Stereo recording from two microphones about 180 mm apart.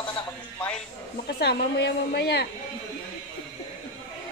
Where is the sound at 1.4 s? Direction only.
65° left (ahead or behind).